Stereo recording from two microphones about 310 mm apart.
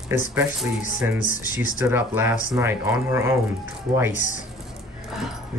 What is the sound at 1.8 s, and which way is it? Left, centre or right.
Speech, centre.